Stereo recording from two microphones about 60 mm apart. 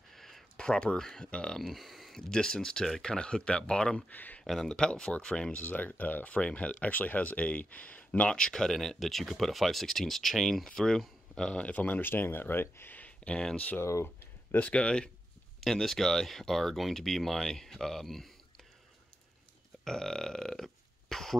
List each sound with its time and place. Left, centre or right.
0.1 s a sound: centre
0.6 s speech: centre
1.6 s speech: centre
4.1 s speech: left
4.5 s speech: centre
5.6 s speech: left; by 11.6 s centre
11.6 s speech: left
13.7 s speech: left
14.0 s speech: left
15.6 s speech: centre
19.8 s burping: centre